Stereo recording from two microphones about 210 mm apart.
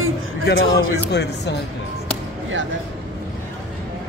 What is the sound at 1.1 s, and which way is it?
Speech, 55° left (ahead or behind).